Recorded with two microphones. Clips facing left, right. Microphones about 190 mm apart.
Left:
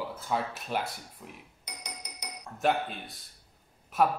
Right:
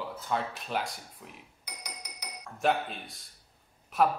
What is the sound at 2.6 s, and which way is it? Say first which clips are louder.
Speech: even; centre (ahead or behind).